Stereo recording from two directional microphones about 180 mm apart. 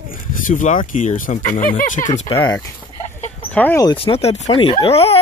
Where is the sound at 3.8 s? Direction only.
30° left (ahead or behind).